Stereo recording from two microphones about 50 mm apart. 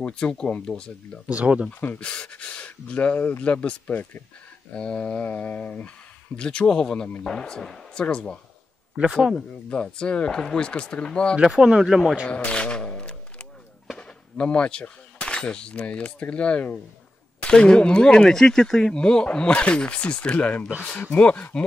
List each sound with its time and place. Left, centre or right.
0.0 s speech: left
1.3 s speech: right
1.7 s speech: left
2.0 s speech: left
4.7 s speech: left
6.3 s speech: left
8.9 s speech: centre
9.7 s speech: left
11.4 s speech: centre
12.3 s a sound: left
13.9 s speech: left